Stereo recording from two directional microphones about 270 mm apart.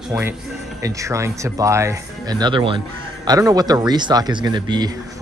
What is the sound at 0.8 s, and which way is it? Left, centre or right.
Speech, centre.